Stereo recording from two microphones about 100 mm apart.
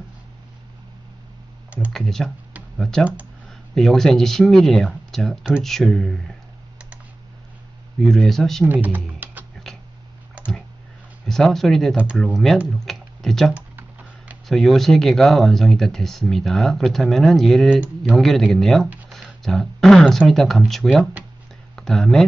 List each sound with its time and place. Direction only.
1.9 s speech: 5° left (ahead or behind)
8.0 s speech: 5° left (ahead or behind)
8.6 s speech: 20° right (ahead or behind)
9.2 s music: 20° right (ahead or behind)
11.2 s speech: 5° left (ahead or behind)
12.8 s computer keyboard: 5° left (ahead or behind)
13.5 s computer keyboard: 15° right (ahead or behind)
14.5 s speech: centre (ahead or behind)